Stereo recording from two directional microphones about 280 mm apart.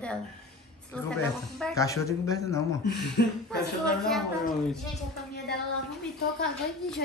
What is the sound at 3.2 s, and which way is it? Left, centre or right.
Speech, left.